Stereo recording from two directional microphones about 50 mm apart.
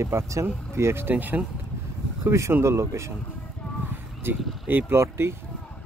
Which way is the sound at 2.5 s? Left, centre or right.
Right.